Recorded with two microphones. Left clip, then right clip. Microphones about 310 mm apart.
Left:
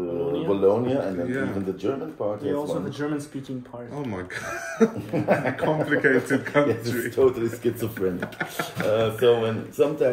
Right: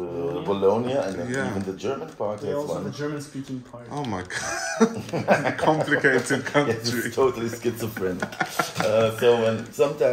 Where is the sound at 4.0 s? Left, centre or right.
Centre.